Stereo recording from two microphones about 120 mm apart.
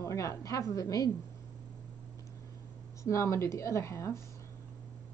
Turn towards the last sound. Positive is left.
turn(degrees=25)  # may be behind; listen again after turning